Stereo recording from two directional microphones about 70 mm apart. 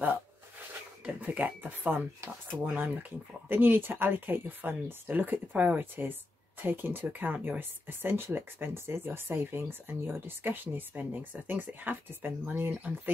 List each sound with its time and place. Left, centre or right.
1.0 s speech: right